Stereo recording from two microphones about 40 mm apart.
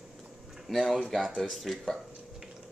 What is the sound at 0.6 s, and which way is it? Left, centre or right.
Speech, centre.